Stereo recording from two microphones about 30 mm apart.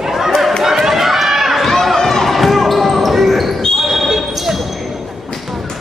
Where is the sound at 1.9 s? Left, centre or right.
Centre.